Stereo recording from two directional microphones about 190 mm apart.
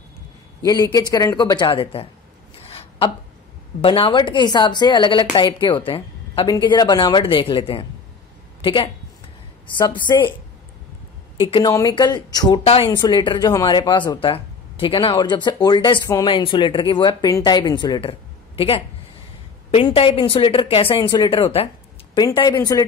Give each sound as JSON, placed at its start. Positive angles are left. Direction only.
{"t": 0.7, "sound": "speech", "side_deg": 20}
{"t": 3.8, "sound": "a woman's voice", "side_deg": 30}
{"t": 11.3, "sound": "speech", "side_deg": 25}
{"t": 19.7, "sound": "speech", "side_deg": 30}